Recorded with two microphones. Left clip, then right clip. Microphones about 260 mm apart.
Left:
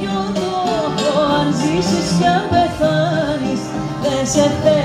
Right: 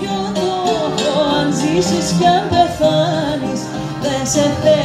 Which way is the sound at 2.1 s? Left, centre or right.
Right.